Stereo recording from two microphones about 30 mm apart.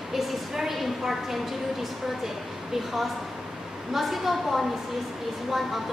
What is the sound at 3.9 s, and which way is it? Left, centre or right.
A man's voice, centre.